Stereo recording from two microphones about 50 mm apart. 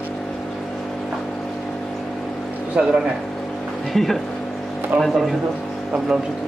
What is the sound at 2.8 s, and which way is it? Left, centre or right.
Speech, right.